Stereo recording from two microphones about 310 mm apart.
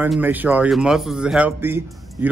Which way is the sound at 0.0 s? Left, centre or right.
Centre.